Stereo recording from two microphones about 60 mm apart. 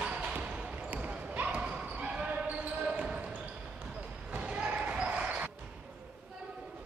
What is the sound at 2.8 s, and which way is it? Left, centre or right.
Basketball bounce, centre.